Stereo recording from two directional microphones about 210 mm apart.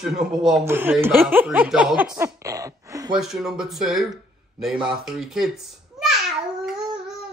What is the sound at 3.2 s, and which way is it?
A child's voice, centre (ahead or behind).